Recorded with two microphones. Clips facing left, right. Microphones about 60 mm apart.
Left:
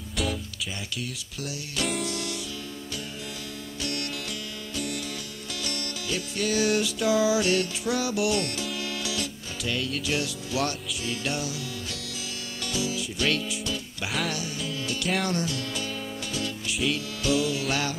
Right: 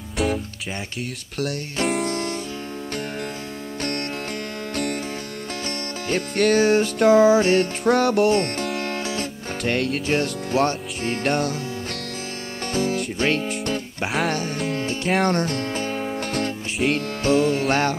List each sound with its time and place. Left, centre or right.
2.0 s music: right
4.7 s music: right
6.0 s music: right
8.3 s music: right
10.0 s music: right
12.7 s music: right
14.8 s music: right